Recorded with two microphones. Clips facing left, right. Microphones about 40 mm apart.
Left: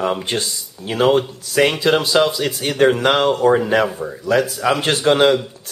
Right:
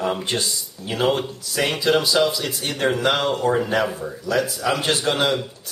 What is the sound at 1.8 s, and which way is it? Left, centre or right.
A man's voice, left.